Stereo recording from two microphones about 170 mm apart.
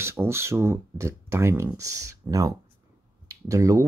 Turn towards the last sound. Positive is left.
turn(degrees=-20)  # may be behind; listen again after turning